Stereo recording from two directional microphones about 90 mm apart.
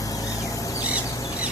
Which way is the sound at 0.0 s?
40° left (ahead or behind).